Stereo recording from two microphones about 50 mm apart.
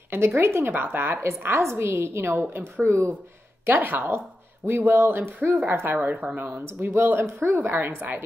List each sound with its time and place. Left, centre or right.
0.4 s a woman's voice: right
0.7 s speech: right
1.4 s a woman's voice: right
3.6 s speech: right
6.0 s speech: right
6.6 s a woman's voice: right